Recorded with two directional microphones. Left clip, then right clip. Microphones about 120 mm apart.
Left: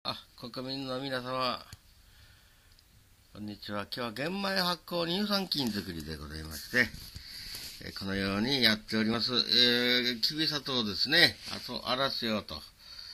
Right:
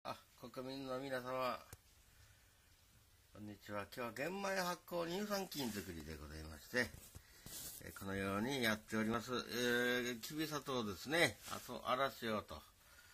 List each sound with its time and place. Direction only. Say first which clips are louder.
0.0 s speech: left 11 dB; 25° left (ahead or behind)
3.3 s speech: left 9 dB; 25° left (ahead or behind); by 11.7 s 10° left (ahead or behind)
11.7 s speech: left 8 dB; 30° left (ahead or behind)